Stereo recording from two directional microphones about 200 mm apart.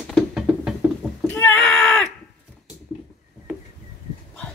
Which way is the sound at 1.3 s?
10° left (ahead or behind).